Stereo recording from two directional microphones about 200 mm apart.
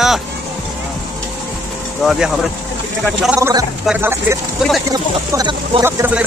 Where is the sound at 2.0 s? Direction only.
Centre (ahead or behind).